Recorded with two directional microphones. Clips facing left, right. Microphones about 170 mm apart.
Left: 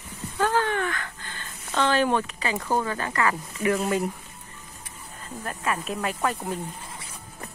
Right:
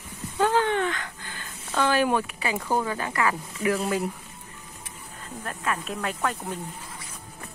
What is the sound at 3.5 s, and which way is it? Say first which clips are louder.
Speech: left 1 dB; centre (ahead or behind).